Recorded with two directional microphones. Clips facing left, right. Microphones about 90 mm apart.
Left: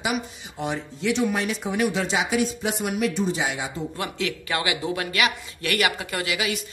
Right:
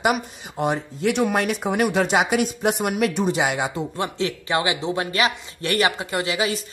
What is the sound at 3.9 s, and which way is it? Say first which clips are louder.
A man's voice: right 3 dB; 30° right (ahead or behind).